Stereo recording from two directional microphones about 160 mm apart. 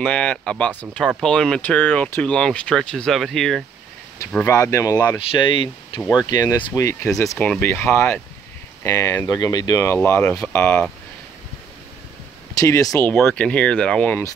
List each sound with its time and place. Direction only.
0.0 s speech: 5° left (ahead or behind)
4.5 s speech: 20° left (ahead or behind)
7.3 s speech: 10° left (ahead or behind)
9.9 s speech: 10° left (ahead or behind)
12.5 s speech: 20° left (ahead or behind)
13.2 s speech: 5° left (ahead or behind)